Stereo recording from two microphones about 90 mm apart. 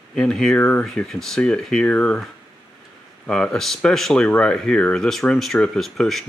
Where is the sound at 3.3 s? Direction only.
5° left (ahead or behind).